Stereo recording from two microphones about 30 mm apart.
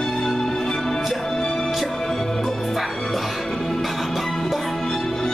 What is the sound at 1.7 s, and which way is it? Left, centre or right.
Music, centre.